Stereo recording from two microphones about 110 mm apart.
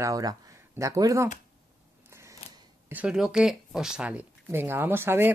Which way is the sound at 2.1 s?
25° right (ahead or behind).